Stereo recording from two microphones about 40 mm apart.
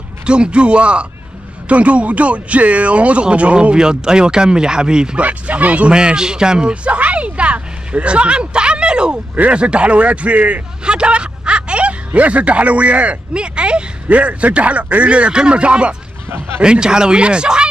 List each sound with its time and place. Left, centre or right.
0.3 s speech: right
3.7 s speech: centre
5.2 s speech: right
5.9 s speech: right
10.8 s a sound: right
12.1 s speech: right
16.3 s a man's voice: right
16.6 s speech: right